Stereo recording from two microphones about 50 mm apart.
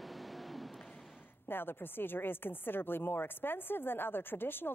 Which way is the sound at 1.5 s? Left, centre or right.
Left.